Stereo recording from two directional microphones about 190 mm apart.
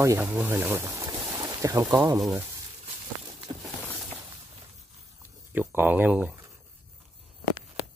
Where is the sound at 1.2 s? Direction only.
20° right (ahead or behind).